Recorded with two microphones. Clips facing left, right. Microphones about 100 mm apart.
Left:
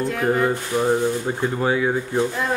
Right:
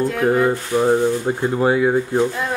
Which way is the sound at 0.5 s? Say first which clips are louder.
Right 3 dB; 15° right (ahead or behind).